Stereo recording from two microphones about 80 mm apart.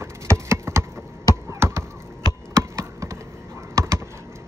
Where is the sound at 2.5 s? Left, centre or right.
Right.